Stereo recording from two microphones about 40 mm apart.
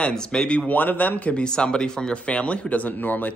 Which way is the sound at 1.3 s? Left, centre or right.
Centre.